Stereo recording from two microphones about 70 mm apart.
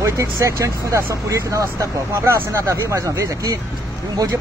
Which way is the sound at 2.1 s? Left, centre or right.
Right.